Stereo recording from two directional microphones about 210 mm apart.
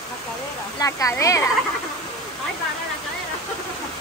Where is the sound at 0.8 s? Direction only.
15° left (ahead or behind).